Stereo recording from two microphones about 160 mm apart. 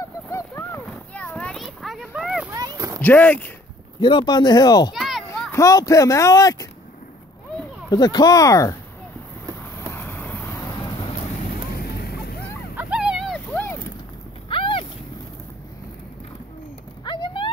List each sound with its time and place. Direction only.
0.3 s a sound: 15° left (ahead or behind); by 2.4 s 5° right (ahead or behind)
2.5 s a sound: 25° right (ahead or behind)
3.0 s speech: 10° left (ahead or behind)
4.0 s speech: 30° left (ahead or behind)
4.9 s children playing: centre (ahead or behind)
5.5 s speech: 20° left (ahead or behind)
7.9 s speech: 25° left (ahead or behind)
9.8 s vehicle: 15° left (ahead or behind)
11.7 s vehicle: 75° left (ahead or behind)
12.7 s dog: 5° right (ahead or behind)
13.5 s a sound: 15° left (ahead or behind)
14.5 s boat: 35° left (ahead or behind)
17.0 s a sound: 30° left (ahead or behind)